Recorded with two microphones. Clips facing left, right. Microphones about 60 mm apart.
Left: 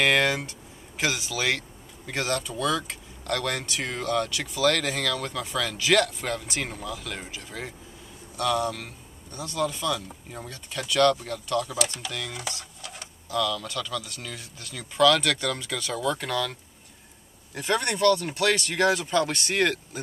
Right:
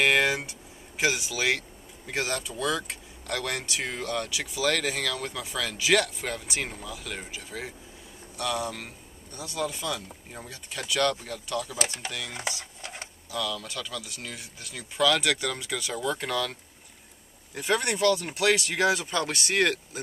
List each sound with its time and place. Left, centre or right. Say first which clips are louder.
0.0 s speech: left 1 dB; centre
12.8 s a sound: right 2 dB; right
13.3 s speech: left 5 dB; centre
17.6 s speech: left 1 dB; centre